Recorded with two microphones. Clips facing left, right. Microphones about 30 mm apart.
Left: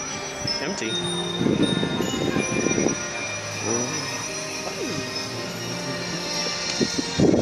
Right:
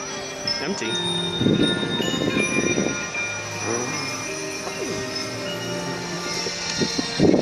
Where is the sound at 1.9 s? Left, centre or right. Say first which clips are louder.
Right 2 dB; right.